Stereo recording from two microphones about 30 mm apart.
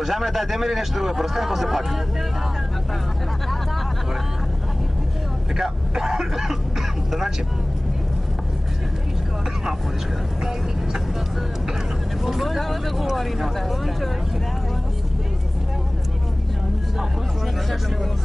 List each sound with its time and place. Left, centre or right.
0.0 s a man's voice: centre
5.6 s speech: centre
12.2 s a man's voice: centre